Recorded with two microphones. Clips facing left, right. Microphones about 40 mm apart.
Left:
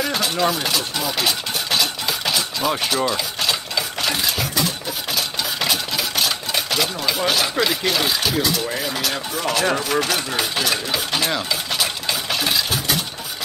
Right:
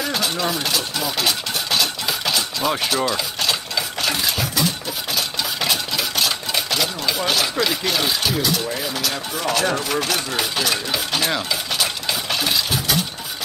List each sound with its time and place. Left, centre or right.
0.1 s engine: centre
5.1 s a sound: centre
7.5 s speech: centre
8.9 s speech: centre
9.4 s speech: centre